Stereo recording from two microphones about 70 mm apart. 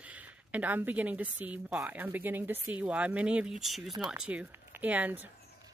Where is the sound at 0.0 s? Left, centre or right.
Right; by 3.9 s centre.